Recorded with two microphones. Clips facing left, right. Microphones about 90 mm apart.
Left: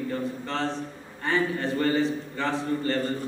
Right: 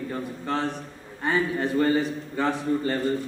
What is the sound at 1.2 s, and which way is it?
A man's voice, 15° right (ahead or behind).